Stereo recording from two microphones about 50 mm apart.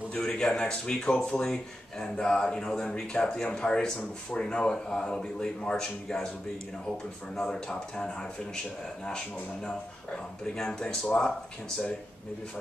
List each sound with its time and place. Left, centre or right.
0.1 s speech: centre
7.3 s speech: centre
10.4 s speech: centre